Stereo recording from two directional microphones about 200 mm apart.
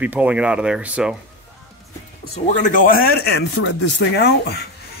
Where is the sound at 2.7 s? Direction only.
45° left (ahead or behind).